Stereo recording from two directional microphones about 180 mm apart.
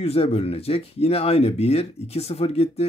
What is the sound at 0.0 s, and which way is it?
Speech, 35° left (ahead or behind).